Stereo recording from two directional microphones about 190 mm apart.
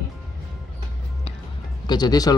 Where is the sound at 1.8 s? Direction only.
20° left (ahead or behind).